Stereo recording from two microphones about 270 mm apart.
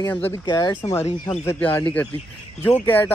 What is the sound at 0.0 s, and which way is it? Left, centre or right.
Speech, centre.